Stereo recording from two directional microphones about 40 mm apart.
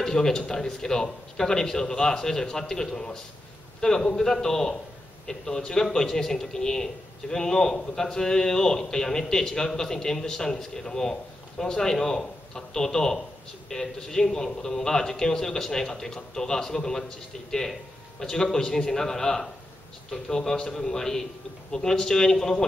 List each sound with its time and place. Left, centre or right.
0.0 s a man's voice: centre